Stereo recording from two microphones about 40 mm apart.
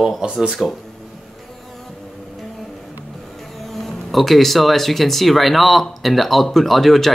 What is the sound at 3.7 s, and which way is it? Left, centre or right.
Speech, centre.